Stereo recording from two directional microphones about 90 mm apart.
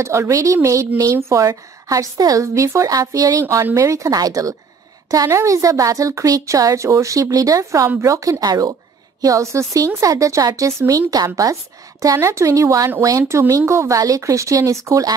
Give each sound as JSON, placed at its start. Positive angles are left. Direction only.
{"t": 0.0, "sound": "a woman's voice", "side_deg": -30}